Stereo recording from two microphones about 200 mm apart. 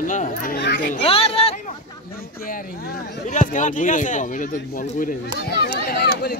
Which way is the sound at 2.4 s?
45° left (ahead or behind).